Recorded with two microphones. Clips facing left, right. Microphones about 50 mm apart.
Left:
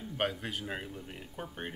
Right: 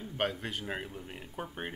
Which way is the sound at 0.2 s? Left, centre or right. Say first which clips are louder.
Even; centre.